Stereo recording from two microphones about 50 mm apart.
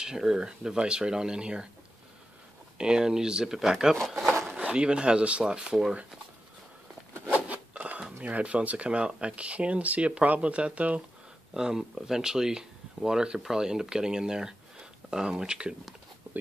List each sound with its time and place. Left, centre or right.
0.0 s speech: centre
2.8 s speech: centre
7.2 s a sound: right
8.2 s speech: right
11.5 s speech: centre